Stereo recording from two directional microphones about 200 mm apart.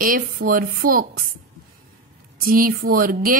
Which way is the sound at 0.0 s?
45° right (ahead or behind).